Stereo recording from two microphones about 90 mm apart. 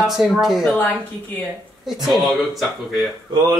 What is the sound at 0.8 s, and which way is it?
Speech, 20° left (ahead or behind).